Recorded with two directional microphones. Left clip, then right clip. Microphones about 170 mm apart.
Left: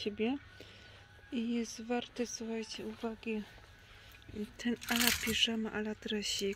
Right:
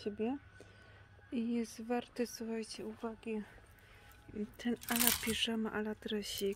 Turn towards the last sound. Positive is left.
turn(degrees=0)  # may be behind; listen again after turning